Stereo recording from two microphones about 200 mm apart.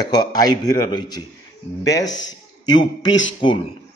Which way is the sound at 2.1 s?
65° left (ahead or behind).